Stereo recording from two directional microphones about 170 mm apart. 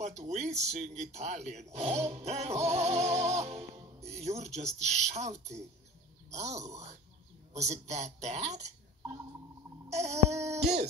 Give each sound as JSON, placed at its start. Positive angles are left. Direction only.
{"t": 0.0, "sound": "speech", "side_deg": -40}
{"t": 9.8, "sound": "speech", "side_deg": -40}